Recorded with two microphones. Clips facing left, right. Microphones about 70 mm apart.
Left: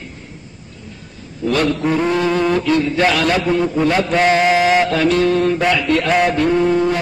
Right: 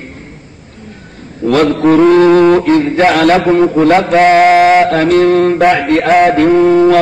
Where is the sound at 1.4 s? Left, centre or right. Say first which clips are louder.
Right 7 dB; right.